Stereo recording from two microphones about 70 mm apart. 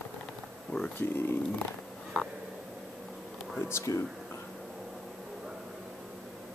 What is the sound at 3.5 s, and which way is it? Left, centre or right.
Speech, left.